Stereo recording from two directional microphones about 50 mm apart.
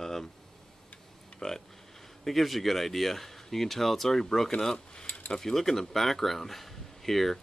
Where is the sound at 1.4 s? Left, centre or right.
Centre.